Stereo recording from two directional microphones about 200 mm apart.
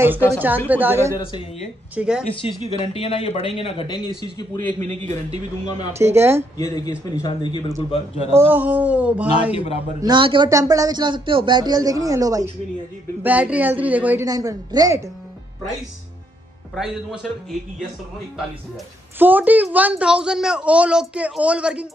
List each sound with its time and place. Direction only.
0.0 s a woman's voice: 10° right (ahead or behind)
2.4 s speech: 25° left (ahead or behind)
5.9 s a woman's voice: 15° right (ahead or behind)
6.6 s speech: 20° left (ahead or behind)
8.4 s a woman's voice: 10° right (ahead or behind)
9.5 s speech: 30° left (ahead or behind)
10.0 s a man's voice: 25° right (ahead or behind); by 14.2 s 10° right (ahead or behind)
14.2 s a woman's voice: 20° right (ahead or behind)
16.7 s a woman's voice: centre (ahead or behind)
19.1 s a woman's voice: 10° right (ahead or behind)